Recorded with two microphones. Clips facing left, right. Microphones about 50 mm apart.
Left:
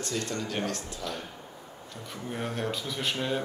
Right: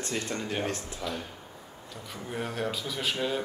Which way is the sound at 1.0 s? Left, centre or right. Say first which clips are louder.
Right 2 dB; centre.